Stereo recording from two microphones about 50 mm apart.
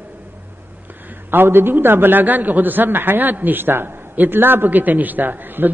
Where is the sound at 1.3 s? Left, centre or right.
Right.